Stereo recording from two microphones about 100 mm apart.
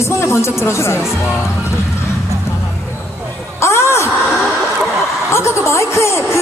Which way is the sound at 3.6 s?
30° left (ahead or behind).